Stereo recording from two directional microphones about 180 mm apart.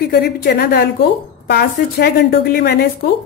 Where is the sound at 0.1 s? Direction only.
60° left (ahead or behind).